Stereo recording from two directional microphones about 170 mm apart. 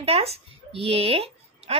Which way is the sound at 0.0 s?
35° right (ahead or behind).